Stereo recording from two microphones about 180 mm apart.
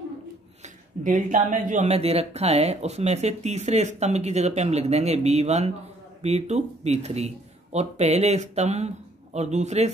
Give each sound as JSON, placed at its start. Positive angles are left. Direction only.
{"t": 1.0, "sound": "speech", "side_deg": -45}